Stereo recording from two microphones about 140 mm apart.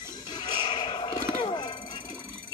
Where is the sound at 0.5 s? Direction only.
35° left (ahead or behind).